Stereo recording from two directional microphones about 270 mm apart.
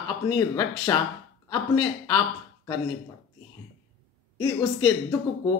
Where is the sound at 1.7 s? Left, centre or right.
Centre.